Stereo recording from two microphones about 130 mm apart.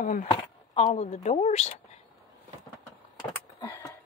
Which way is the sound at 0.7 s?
60° left (ahead or behind).